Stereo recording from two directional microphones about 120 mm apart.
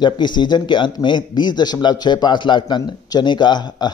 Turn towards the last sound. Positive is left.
turn(degrees=40)  # may be behind; listen again after turning